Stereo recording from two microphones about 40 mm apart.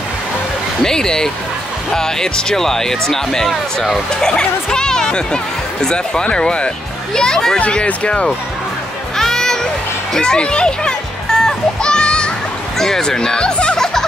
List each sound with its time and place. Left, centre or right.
0.8 s speech: centre
7.7 s speech: left
9.1 s children playing: centre
10.1 s music: left
12.7 s speech: centre